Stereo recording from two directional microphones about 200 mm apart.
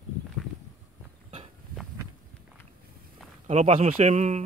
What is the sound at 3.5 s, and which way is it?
Speech, 30° right (ahead or behind).